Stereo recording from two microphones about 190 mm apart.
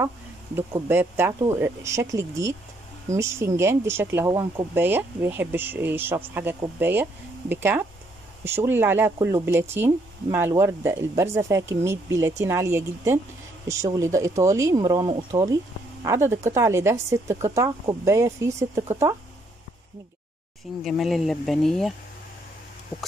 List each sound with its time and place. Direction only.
0.6 s speech: 10° right (ahead or behind)
20.8 s speech: centre (ahead or behind)